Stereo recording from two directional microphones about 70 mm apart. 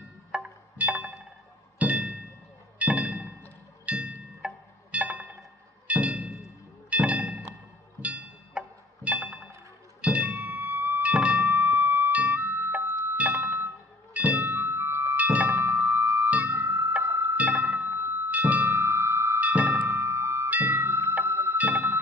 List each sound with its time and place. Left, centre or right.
0.3 s music: centre
14.1 s music: right
15.1 s music: right
17.4 s music: right
19.4 s music: right
20.4 s music: right
21.5 s music: right